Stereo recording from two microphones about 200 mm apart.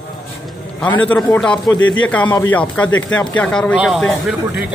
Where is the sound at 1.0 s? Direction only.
10° left (ahead or behind).